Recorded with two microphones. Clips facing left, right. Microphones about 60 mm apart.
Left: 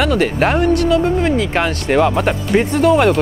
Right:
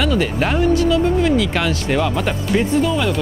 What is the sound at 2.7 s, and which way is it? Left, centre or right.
Speech, left.